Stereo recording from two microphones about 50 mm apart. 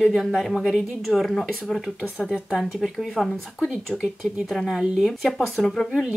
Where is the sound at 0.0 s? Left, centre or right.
Centre.